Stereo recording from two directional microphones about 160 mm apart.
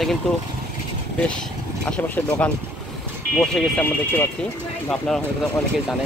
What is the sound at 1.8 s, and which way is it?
Speech, 10° left (ahead or behind).